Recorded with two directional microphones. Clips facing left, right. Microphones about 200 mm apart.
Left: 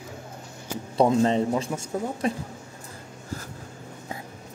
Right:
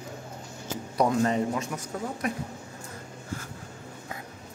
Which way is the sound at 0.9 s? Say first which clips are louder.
Left 4 dB; 25° left (ahead or behind).